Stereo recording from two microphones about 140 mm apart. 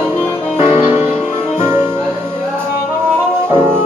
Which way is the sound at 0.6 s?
50° left (ahead or behind).